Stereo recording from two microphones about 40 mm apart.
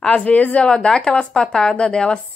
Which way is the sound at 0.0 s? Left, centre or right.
Left.